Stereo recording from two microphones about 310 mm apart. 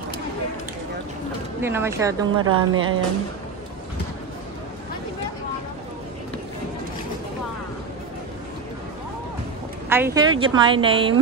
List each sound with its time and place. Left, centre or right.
1.6 s speech: centre
2.3 s speech: right
9.8 s speech: centre